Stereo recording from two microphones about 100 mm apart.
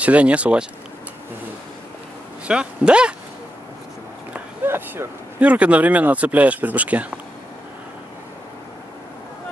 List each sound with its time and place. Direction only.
0.0 s speech: 15° right (ahead or behind)
2.4 s speech: 10° right (ahead or behind)
4.6 s speech: 25° right (ahead or behind)